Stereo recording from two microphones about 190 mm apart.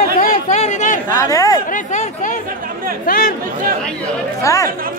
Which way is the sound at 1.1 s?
15° left (ahead or behind).